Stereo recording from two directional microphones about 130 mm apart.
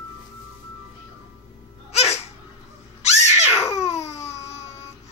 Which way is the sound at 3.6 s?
25° left (ahead or behind).